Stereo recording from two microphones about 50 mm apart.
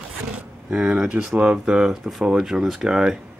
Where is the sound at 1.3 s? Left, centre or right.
Centre.